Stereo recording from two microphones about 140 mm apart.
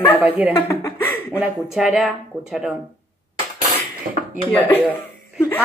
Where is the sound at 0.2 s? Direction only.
10° right (ahead or behind).